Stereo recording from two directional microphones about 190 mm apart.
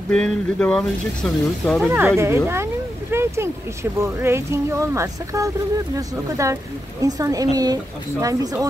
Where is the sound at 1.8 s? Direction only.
10° right (ahead or behind).